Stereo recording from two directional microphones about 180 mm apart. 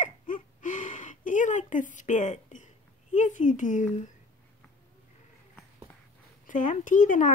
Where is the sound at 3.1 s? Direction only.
45° left (ahead or behind).